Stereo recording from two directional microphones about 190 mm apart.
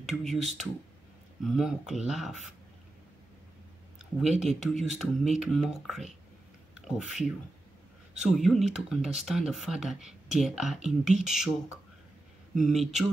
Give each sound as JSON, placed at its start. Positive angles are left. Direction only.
{"t": 0.2, "sound": "speech", "side_deg": 0}
{"t": 4.2, "sound": "speech", "side_deg": 0}
{"t": 12.5, "sound": "speech", "side_deg": 0}